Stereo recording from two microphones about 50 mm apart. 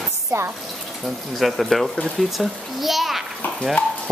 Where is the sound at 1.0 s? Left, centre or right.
Centre.